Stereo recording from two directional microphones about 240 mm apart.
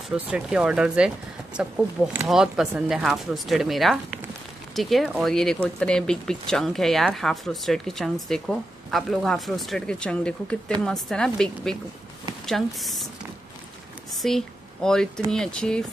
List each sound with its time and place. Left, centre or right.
0.1 s speech: centre
14.2 s speech: centre